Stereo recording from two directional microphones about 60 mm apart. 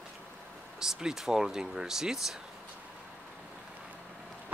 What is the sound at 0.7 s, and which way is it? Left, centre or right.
Speech, centre.